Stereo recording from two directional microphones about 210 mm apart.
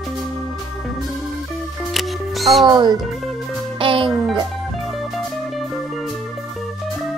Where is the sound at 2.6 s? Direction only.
20° right (ahead or behind).